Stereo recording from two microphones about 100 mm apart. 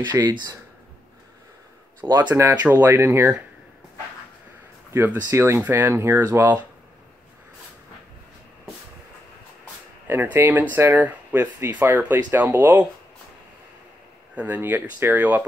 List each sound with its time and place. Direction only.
0.0 s speech: 45° right (ahead or behind)
2.1 s speech: 20° right (ahead or behind)
4.9 s speech: 25° right (ahead or behind)
10.0 s speech: 25° right (ahead or behind)
14.3 s speech: 15° right (ahead or behind)